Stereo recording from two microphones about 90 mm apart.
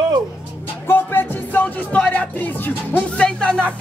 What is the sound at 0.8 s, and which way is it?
Music, 25° left (ahead or behind).